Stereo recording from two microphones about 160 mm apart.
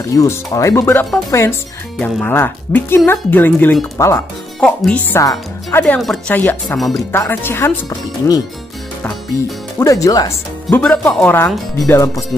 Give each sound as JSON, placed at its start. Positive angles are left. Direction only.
{"t": 0.1, "sound": "speech", "side_deg": 20}
{"t": 4.6, "sound": "speech", "side_deg": 5}
{"t": 5.9, "sound": "speech", "side_deg": 5}
{"t": 9.8, "sound": "speech", "side_deg": 20}
{"t": 10.7, "sound": "speech", "side_deg": 10}